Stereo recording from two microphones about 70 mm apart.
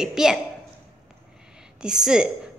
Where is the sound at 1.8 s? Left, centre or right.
Centre.